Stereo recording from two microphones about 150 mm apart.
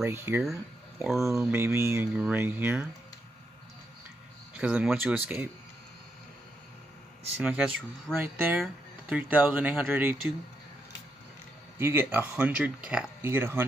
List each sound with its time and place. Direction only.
0.0 s speech: 15° right (ahead or behind)
0.4 s speech: centre (ahead or behind)
1.5 s speech: 15° right (ahead or behind)
4.6 s speech: 10° right (ahead or behind)
7.3 s speech: 5° right (ahead or behind)
11.8 s speech: 15° right (ahead or behind)